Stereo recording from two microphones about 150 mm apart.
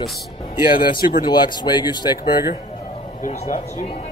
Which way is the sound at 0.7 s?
75° left (ahead or behind).